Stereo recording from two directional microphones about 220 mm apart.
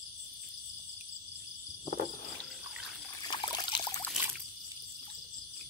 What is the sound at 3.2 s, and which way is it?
Water, 20° left (ahead or behind).